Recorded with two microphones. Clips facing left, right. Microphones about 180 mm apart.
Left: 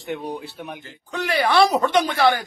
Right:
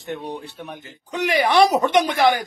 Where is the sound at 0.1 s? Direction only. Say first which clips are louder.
Left 1 dB; centre (ahead or behind).